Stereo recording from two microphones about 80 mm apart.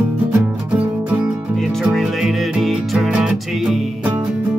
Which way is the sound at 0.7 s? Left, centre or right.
Centre.